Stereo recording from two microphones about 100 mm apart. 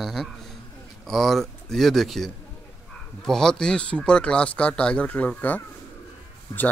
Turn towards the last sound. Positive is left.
turn(degrees=35)  # may be behind; listen again after turning